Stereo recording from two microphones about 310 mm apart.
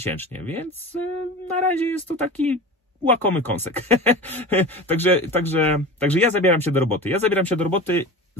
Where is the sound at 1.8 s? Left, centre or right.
Centre.